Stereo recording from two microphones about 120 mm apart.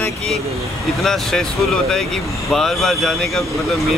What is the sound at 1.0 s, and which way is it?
Speech, 5° left (ahead or behind).